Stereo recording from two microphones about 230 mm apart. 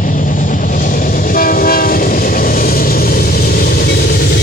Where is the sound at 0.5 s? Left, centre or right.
Left.